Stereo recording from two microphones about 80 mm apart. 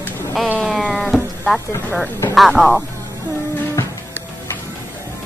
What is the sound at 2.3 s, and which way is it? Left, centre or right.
Speech, centre.